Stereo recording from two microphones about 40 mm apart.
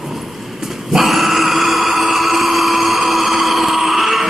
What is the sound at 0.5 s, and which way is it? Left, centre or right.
Dog, centre.